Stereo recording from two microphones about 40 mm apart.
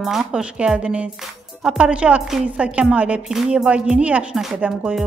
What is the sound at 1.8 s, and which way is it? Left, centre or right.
A woman's voice, right.